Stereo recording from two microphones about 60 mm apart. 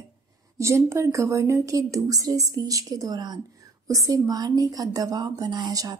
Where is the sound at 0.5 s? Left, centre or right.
Right.